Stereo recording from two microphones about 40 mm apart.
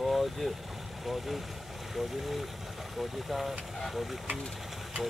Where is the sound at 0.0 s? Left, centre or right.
Centre.